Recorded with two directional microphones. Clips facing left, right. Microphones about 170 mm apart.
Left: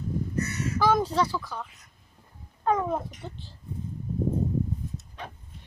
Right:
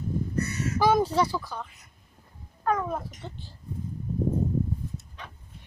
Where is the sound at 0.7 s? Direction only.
10° right (ahead or behind).